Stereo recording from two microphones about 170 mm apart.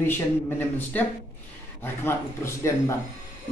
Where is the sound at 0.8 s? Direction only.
10° left (ahead or behind).